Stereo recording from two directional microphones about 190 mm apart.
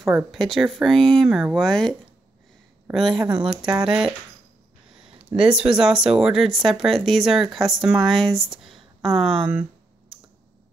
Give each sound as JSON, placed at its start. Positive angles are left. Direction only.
{"t": 0.3, "sound": "speech", "side_deg": 0}
{"t": 3.2, "sound": "speech", "side_deg": -25}
{"t": 3.4, "sound": "speech", "side_deg": -5}